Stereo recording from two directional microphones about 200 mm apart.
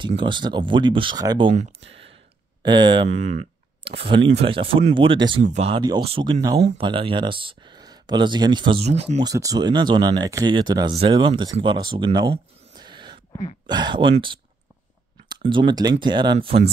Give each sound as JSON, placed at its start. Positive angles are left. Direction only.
{"t": 0.2, "sound": "speech", "side_deg": -25}
{"t": 1.5, "sound": "speech", "side_deg": -30}
{"t": 4.3, "sound": "speech", "side_deg": -30}
{"t": 9.2, "sound": "speech", "side_deg": -15}
{"t": 15.4, "sound": "speech", "side_deg": -25}